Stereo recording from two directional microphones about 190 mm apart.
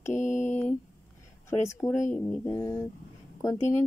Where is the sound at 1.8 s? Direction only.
20° left (ahead or behind).